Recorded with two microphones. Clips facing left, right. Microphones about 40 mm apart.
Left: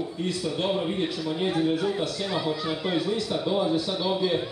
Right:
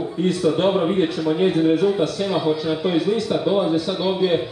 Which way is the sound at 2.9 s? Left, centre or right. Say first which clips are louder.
Right 6 dB; right.